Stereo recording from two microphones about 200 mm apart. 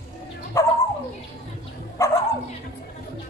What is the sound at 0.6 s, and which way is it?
Dog, 15° left (ahead or behind).